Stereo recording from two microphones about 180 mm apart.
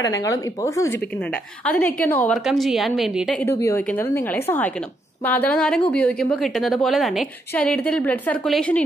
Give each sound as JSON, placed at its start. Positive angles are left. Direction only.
{"t": 0.0, "sound": "a woman's voice", "side_deg": 20}
{"t": 3.4, "sound": "a woman's voice", "side_deg": 15}